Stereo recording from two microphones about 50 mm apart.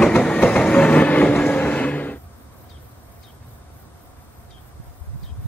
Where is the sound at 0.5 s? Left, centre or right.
Left.